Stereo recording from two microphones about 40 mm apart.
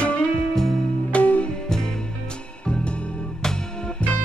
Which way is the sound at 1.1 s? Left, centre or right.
Left.